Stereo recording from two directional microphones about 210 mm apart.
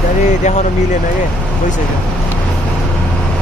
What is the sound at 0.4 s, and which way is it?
Speech, 35° left (ahead or behind).